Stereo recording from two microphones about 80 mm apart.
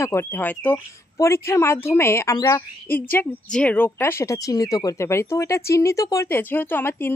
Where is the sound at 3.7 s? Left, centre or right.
Left.